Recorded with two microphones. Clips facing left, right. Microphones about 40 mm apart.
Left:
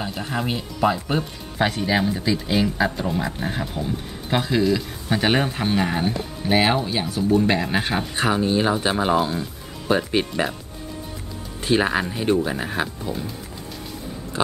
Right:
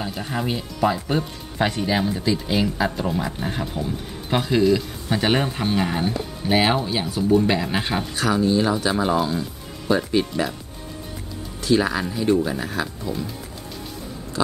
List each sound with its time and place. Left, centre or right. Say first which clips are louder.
0.0 s speech: even; centre
8.2 s speech: right 1 dB; left
11.6 s speech: even; left